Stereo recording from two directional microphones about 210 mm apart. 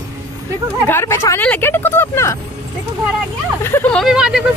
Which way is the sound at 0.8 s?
10° left (ahead or behind).